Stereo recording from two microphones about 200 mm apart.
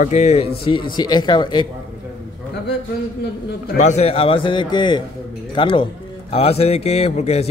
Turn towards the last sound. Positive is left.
turn(degrees=35)  # may be behind; listen again after turning